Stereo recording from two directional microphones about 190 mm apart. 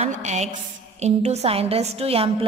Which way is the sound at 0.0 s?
35° right (ahead or behind).